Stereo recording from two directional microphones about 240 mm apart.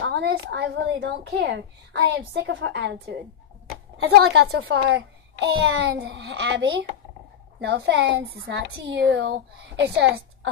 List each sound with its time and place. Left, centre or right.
0.0 s a child's voice: right